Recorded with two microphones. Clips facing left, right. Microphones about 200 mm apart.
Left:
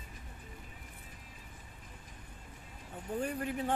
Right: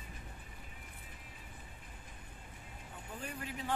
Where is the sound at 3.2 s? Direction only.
50° left (ahead or behind).